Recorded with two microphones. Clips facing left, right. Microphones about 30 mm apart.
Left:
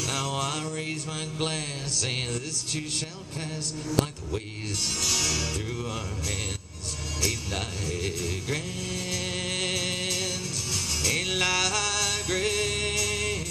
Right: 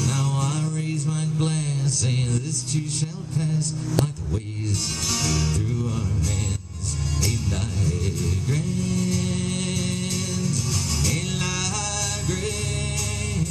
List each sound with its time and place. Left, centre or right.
0.0 s music: centre
0.4 s a sound: left
5.0 s music: centre
8.5 s music: left